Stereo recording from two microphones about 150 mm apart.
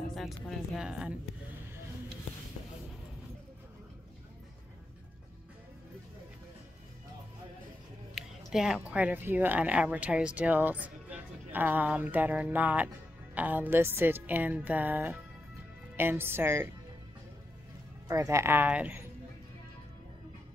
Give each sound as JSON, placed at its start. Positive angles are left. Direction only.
{"t": 0.1, "sound": "speech", "side_deg": 0}
{"t": 8.1, "sound": "a woman's voice", "side_deg": 0}
{"t": 18.0, "sound": "speech", "side_deg": -20}